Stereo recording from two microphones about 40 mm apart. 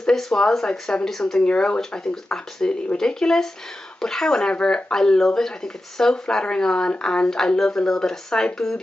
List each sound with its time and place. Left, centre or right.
0.0 s speech: centre
1.4 s speech: left